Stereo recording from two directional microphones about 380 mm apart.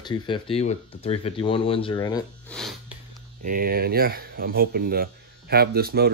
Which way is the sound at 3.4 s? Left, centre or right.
Right.